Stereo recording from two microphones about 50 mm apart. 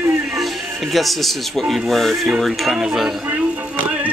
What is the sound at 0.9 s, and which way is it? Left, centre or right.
Speech, centre.